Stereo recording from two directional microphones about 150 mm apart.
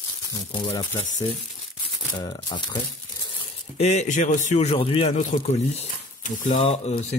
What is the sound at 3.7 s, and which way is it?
Speech, 50° left (ahead or behind).